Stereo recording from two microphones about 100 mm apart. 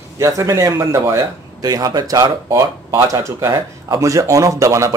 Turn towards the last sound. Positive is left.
turn(degrees=-30)  # may be behind; listen again after turning